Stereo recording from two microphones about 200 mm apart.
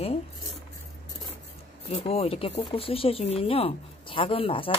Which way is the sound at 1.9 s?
30° left (ahead or behind).